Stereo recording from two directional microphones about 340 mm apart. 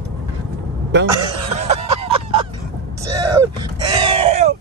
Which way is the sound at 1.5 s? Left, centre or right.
Centre.